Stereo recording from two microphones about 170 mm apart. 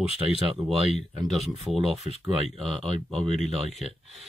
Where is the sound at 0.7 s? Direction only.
Centre (ahead or behind).